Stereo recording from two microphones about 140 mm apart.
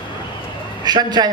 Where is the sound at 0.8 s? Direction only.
30° right (ahead or behind).